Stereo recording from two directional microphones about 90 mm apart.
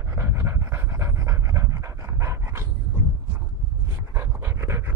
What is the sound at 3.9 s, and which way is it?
Pant, 30° right (ahead or behind).